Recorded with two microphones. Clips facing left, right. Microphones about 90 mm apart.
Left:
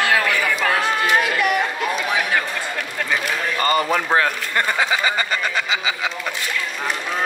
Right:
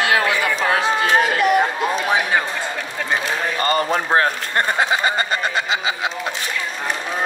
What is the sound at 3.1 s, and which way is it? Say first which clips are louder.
Speech: right 2 dB; 30° right (ahead or behind).